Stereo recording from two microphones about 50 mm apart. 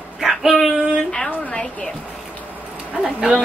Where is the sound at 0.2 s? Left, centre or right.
Centre.